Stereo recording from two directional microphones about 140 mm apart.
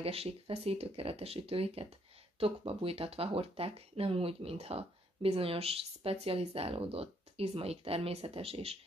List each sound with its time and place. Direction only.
0.0 s speech: 45° right (ahead or behind)